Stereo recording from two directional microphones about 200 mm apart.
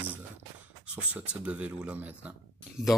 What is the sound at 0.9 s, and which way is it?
Speech, 5° right (ahead or behind).